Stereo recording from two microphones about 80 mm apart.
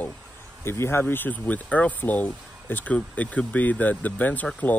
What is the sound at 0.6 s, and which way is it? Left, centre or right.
Speech, left.